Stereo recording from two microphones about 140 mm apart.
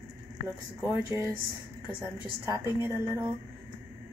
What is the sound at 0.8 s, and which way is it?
Speech, 20° right (ahead or behind).